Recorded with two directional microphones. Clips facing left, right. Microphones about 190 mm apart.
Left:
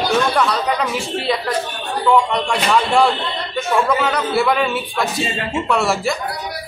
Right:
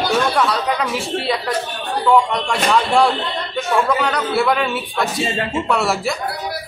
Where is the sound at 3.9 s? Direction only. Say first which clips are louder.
Left 1 dB; centre (ahead or behind).